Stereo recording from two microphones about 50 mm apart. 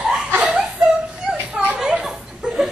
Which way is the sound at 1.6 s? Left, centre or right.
Centre.